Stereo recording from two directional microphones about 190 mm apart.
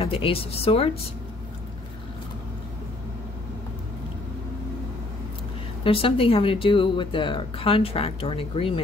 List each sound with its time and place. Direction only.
0.0 s speech: 30° left (ahead or behind)
5.9 s speech: 30° left (ahead or behind)